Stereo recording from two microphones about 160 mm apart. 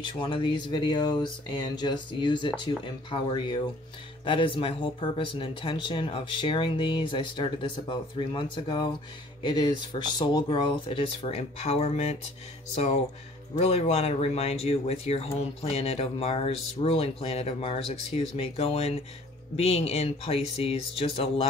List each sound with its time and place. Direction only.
0.0 s speech: 30° left (ahead or behind)